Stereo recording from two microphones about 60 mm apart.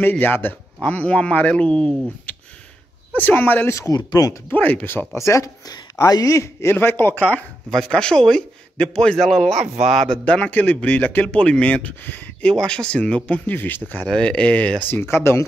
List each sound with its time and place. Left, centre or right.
0.2 s speech: left; by 2.0 s centre
2.3 s a sound: left
3.2 s speech: left
3.7 s speech: left
4.5 s speech: left
5.1 s speech: left
6.7 s speech: left
7.7 s a man's voice: centre
10.0 s speech: centre
12.4 s a man's voice: centre
13.6 s speech: left
14.0 s a man's voice: centre
14.9 s speech: left